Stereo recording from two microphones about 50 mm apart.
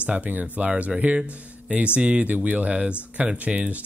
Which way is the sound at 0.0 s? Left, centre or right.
Right.